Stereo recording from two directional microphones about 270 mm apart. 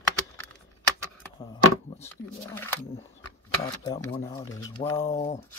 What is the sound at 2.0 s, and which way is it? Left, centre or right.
Speech, centre.